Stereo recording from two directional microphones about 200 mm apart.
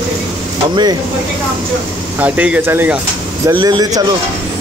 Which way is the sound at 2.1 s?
10° right (ahead or behind).